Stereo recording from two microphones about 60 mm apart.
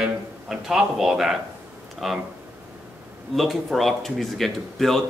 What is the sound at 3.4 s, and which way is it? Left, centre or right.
Speech, centre.